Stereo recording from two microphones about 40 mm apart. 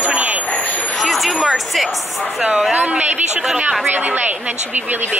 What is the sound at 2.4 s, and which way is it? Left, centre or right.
Speech, centre.